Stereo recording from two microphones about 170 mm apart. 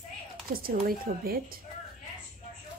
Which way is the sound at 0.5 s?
60° right (ahead or behind).